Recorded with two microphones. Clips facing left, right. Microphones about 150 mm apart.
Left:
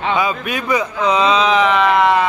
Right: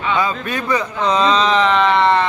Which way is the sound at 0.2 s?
10° left (ahead or behind).